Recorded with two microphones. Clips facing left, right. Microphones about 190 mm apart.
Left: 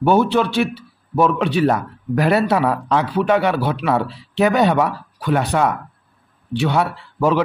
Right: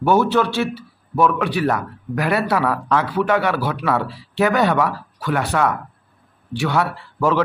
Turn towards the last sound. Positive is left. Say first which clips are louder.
# left 2 dB
turn(degrees=20)  # may be behind; listen again after turning